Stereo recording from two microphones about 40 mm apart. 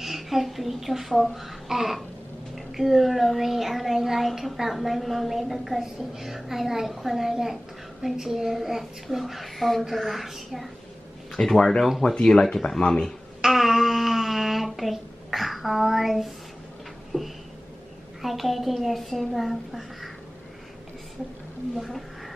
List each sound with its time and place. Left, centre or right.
0.0 s a child's voice: centre
11.3 s speech: centre
13.4 s a woman's voice: centre
17.1 s a sound: centre
18.2 s a woman's voice: centre
21.7 s a woman's voice: centre